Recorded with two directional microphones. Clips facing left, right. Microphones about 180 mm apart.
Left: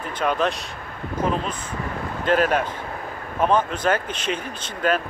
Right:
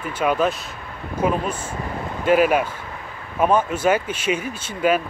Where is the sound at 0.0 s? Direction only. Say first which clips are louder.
Right 2 dB; 5° right (ahead or behind).